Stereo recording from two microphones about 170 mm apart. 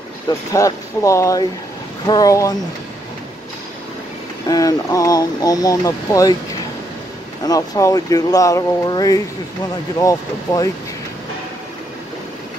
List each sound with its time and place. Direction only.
0.5 s speech: 20° left (ahead or behind)
4.5 s speech: 20° left (ahead or behind)
7.4 s speech: 20° left (ahead or behind)